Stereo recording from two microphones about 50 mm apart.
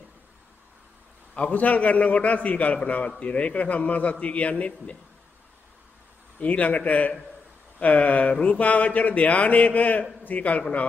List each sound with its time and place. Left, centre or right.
1.3 s speech: left
6.4 s speech: left